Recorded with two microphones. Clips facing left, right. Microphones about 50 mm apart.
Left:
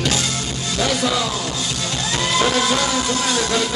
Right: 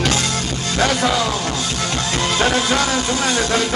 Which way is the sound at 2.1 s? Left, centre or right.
Right.